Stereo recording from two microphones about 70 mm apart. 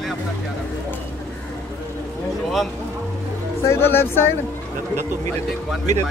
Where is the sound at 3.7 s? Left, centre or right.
Left.